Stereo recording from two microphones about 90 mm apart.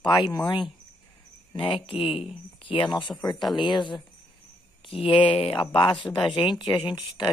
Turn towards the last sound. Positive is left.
turn(degrees=60)  # may be behind; listen again after turning